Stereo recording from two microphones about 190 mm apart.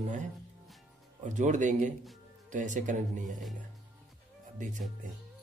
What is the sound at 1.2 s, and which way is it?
A man's voice, 40° right (ahead or behind).